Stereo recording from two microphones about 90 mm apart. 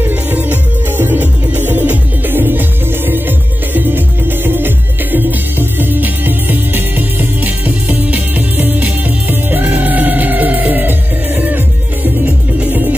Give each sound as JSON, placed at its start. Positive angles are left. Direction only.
{"t": 0.3, "sound": "music", "side_deg": -20}